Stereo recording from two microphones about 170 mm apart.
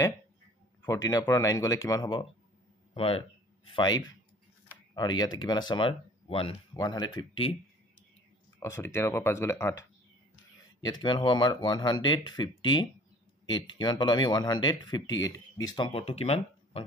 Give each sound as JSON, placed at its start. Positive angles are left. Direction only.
{"t": 0.8, "sound": "speech", "side_deg": 20}
{"t": 8.5, "sound": "speech", "side_deg": 15}
{"t": 10.8, "sound": "speech", "side_deg": 25}
{"t": 15.9, "sound": "speech", "side_deg": 35}